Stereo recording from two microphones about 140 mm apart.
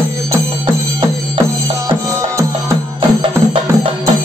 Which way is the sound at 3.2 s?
40° right (ahead or behind).